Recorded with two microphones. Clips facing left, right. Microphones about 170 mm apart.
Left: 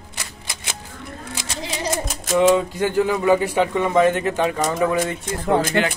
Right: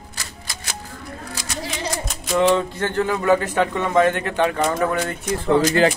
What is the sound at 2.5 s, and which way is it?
Speech, 10° left (ahead or behind).